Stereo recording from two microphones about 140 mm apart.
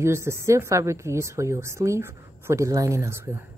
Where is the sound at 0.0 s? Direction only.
20° right (ahead or behind).